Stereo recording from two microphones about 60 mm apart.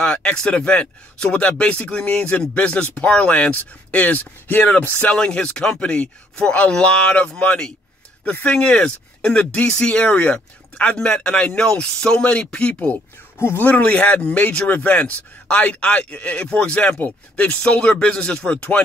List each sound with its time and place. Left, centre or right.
0.0 s speech: centre
5.1 s speech: centre